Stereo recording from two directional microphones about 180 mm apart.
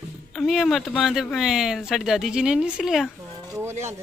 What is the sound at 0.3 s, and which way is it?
Speech, centre (ahead or behind).